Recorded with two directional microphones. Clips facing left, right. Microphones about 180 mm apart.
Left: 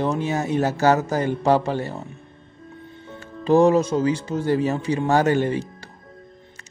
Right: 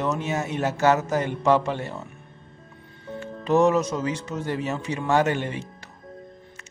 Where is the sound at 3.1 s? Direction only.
35° left (ahead or behind).